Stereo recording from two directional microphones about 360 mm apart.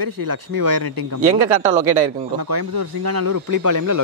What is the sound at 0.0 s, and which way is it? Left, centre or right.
Speech, right.